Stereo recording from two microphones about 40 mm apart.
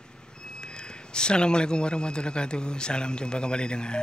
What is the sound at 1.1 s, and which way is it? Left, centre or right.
A man's voice, left.